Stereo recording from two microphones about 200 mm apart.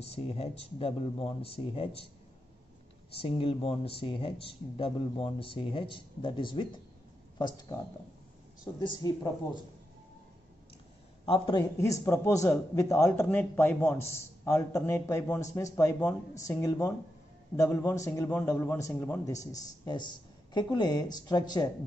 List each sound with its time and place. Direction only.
0.0 s speech: 30° left (ahead or behind)
3.1 s speech: 30° left (ahead or behind)
8.7 s speech: 20° left (ahead or behind)
11.2 s speech: 25° left (ahead or behind)
11.8 s a man's voice: 15° left (ahead or behind)